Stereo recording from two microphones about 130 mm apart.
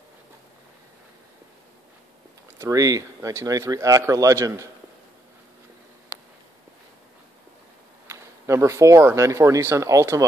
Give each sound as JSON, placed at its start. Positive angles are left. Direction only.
{"t": 2.6, "sound": "speech", "side_deg": -25}
{"t": 8.1, "sound": "speech", "side_deg": -20}